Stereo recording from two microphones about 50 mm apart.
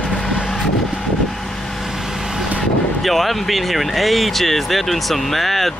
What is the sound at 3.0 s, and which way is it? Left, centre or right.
Speech, centre.